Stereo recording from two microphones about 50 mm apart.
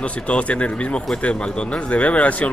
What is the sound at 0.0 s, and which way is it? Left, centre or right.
Speech, left.